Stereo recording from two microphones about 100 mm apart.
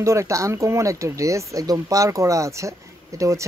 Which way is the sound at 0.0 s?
30° right (ahead or behind).